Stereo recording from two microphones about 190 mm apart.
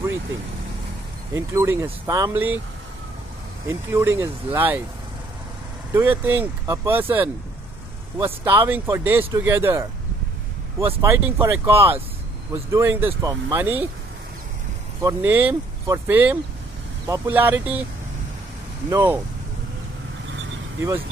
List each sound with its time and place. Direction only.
1.3 s speech: 15° right (ahead or behind)
3.6 s speech: 15° right (ahead or behind)
5.9 s speech: 10° right (ahead or behind)
11.0 s speech: 15° right (ahead or behind)
15.0 s speech: 10° right (ahead or behind)
18.9 s speech: 15° right (ahead or behind)